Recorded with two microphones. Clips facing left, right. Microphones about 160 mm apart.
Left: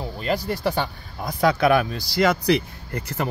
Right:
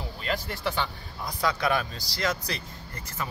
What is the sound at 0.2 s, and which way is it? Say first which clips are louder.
Speech: left 7 dB; 40° left (ahead or behind).